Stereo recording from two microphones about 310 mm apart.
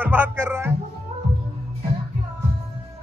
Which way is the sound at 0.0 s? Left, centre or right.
Centre.